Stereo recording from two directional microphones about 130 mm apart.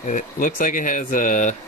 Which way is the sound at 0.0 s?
85° left.